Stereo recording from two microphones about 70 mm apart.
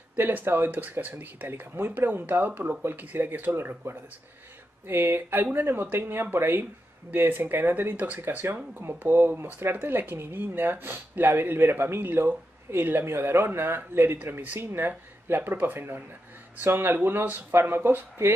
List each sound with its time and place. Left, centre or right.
0.1 s speech: right